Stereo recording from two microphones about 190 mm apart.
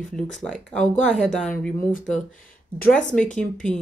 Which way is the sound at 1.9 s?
45° left (ahead or behind).